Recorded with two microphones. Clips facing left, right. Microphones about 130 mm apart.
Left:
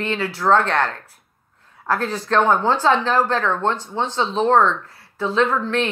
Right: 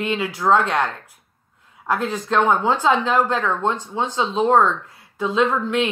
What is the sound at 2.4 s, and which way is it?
Speech, 5° right (ahead or behind).